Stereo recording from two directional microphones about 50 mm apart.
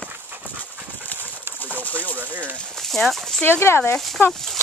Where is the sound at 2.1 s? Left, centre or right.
Right.